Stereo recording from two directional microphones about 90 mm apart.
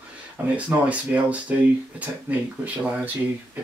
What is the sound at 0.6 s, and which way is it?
Speech, 15° right (ahead or behind).